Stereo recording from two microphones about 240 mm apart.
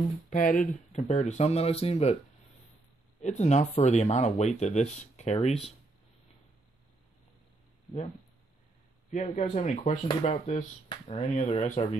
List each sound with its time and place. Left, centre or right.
0.3 s speech: left
3.2 s speech: left
9.1 s speech: left